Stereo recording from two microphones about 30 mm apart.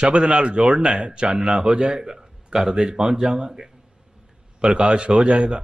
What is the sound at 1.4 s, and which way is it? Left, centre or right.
A man's voice, right.